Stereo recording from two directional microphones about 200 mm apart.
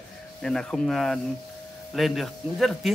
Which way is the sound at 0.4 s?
5° left (ahead or behind).